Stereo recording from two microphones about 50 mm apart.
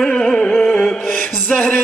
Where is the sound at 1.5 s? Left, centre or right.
Centre.